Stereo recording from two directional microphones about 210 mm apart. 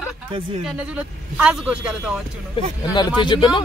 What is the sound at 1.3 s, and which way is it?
Speech, 5° right (ahead or behind).